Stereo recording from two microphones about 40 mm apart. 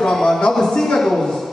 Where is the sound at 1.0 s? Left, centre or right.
Centre.